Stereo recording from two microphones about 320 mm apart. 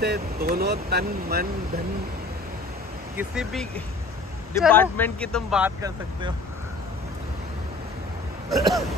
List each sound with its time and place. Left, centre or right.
0.0 s speech: right
3.2 s speech: centre
8.5 s speech: centre